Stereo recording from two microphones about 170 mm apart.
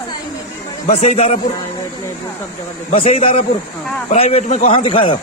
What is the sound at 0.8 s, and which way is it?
Speech, 40° left (ahead or behind).